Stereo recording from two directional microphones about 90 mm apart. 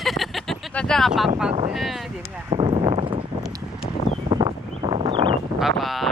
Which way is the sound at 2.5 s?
70° right (ahead or behind).